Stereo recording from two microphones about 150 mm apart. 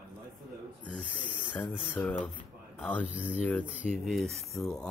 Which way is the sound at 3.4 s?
10° left (ahead or behind).